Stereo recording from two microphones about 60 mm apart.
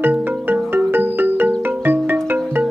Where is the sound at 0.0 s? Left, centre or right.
Right.